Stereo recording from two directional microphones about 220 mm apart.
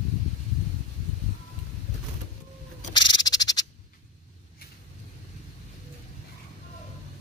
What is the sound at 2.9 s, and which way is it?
Scratch, 20° left (ahead or behind).